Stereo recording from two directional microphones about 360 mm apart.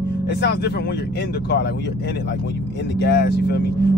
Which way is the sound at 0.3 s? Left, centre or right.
Left.